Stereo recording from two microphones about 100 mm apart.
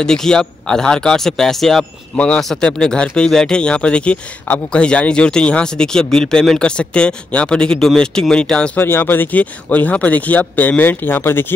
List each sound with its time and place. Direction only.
0.0 s speech: 5° left (ahead or behind)
8.8 s speech: 20° left (ahead or behind)